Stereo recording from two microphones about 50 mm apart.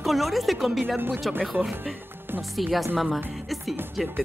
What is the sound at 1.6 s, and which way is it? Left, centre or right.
A woman's voice, centre.